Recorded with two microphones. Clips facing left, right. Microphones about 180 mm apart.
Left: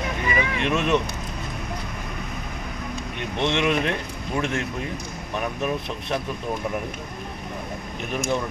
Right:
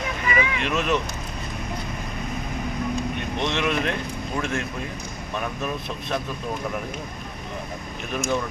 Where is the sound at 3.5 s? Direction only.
15° left (ahead or behind).